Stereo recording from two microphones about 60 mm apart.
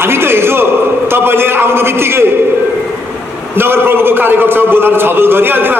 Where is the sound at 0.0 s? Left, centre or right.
Right.